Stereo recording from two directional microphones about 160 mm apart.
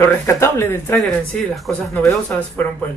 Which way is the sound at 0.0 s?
15° left (ahead or behind).